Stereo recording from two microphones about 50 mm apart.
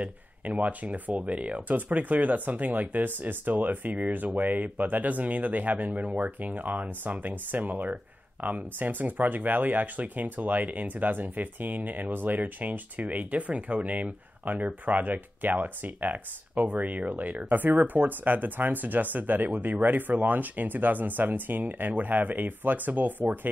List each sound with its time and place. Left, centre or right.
0.0 s speech: right